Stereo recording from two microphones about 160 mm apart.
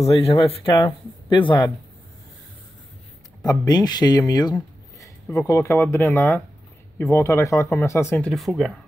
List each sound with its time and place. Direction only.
0.0 s speech: 40° left (ahead or behind)
3.4 s speech: 25° left (ahead or behind)
8.3 s speech: centre (ahead or behind)